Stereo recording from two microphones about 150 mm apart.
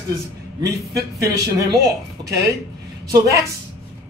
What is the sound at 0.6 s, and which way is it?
A man's voice, 25° right (ahead or behind).